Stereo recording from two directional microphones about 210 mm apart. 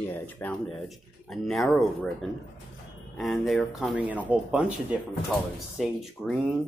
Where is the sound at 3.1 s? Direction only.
Centre (ahead or behind).